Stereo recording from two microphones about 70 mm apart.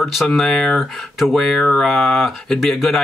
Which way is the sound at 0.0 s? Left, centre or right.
Centre.